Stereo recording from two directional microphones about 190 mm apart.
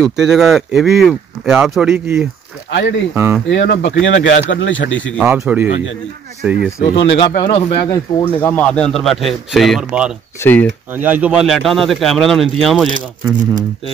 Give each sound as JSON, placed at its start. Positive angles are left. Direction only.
{"t": 0.0, "sound": "speech", "side_deg": 0}
{"t": 2.7, "sound": "speech", "side_deg": 65}
{"t": 5.2, "sound": "a man's voice", "side_deg": -10}
{"t": 6.8, "sound": "speech", "side_deg": 30}
{"t": 8.4, "sound": "speech", "side_deg": 10}
{"t": 10.4, "sound": "speech", "side_deg": 10}
{"t": 10.9, "sound": "speech", "side_deg": -10}